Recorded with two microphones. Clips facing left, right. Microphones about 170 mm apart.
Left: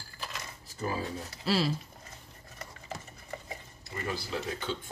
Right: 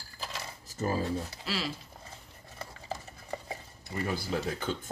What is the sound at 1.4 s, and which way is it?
Speech, 35° left (ahead or behind).